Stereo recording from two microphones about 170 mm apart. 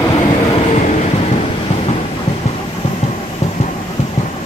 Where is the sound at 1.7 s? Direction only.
35° left (ahead or behind).